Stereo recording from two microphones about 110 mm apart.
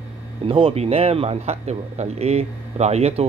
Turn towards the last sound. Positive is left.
turn(degrees=-75)  # may be behind; listen again after turning